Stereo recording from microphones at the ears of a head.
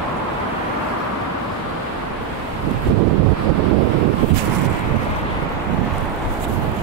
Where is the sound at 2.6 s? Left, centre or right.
Right.